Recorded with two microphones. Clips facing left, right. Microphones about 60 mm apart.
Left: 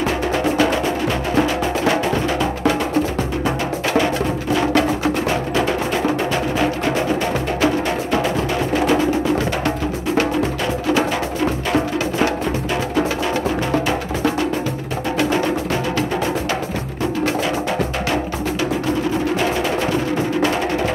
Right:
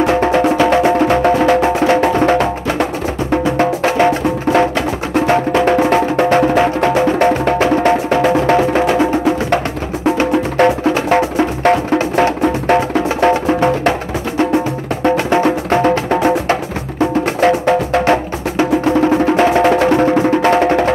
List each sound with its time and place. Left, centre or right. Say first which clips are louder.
0.0 s music: right 7 dB; right
10.6 s music: right 10 dB; right
12.7 s music: right 5 dB; right
15.0 s music: right 6 dB; right